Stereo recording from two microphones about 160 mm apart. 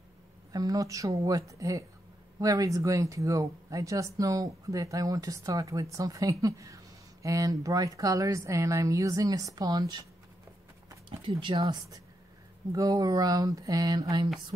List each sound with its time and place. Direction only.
0.5 s speech: 20° right (ahead or behind)
11.1 s speech: 30° right (ahead or behind)
12.7 s speech: 20° right (ahead or behind)